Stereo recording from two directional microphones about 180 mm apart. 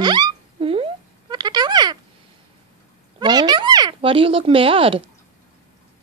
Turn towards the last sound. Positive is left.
turn(degrees=-30)  # may be behind; listen again after turning